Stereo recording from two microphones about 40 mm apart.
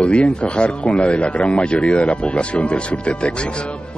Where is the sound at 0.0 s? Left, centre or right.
Left.